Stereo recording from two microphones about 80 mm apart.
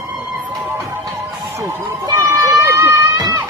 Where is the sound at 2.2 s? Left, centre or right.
Right.